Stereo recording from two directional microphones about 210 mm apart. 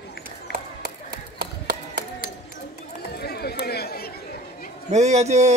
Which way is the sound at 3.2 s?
50° left (ahead or behind).